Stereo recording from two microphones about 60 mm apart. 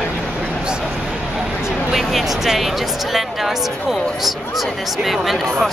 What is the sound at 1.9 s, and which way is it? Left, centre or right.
Speech, centre.